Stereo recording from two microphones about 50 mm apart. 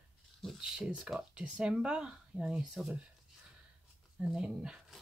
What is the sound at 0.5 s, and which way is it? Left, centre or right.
Speech, centre.